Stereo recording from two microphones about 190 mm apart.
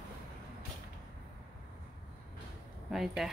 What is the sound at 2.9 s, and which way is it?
Speech, centre (ahead or behind).